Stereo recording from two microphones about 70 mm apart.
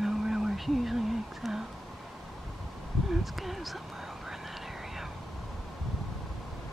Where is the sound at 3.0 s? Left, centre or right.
Centre.